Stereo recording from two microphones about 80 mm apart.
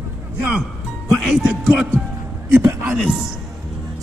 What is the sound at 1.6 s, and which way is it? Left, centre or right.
Speech, centre.